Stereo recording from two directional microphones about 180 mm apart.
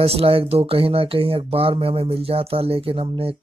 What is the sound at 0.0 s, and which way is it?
Speech, 30° right (ahead or behind).